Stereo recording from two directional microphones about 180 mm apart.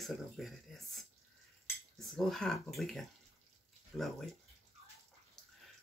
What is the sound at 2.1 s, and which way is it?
Speech, centre (ahead or behind).